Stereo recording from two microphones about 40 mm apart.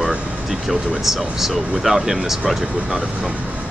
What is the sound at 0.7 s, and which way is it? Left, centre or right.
Speech, centre.